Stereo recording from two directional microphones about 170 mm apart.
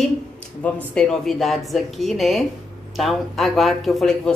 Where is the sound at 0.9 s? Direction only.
5° left (ahead or behind).